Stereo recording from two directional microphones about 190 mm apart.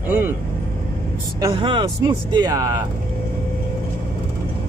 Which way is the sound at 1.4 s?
25° right (ahead or behind).